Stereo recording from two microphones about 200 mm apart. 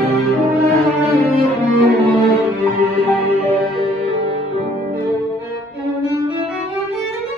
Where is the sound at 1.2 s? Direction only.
50° right (ahead or behind).